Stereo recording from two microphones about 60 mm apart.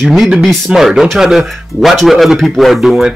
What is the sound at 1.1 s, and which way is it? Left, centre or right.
A man's voice, centre.